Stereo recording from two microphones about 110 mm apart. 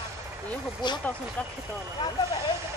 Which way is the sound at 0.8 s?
45° left (ahead or behind).